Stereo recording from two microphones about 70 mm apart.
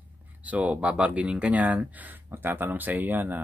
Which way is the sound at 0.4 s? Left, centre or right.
Right.